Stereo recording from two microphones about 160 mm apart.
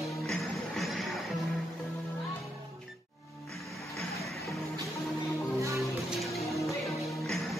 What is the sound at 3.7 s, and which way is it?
Music, centre (ahead or behind).